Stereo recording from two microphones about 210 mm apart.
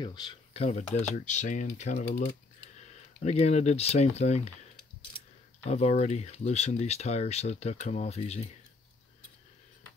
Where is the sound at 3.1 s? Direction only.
30° left (ahead or behind).